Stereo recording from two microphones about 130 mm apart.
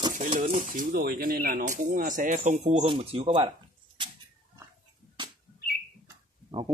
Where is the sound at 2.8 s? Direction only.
45° right (ahead or behind).